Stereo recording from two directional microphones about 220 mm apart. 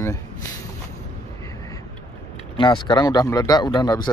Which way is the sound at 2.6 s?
20° left (ahead or behind).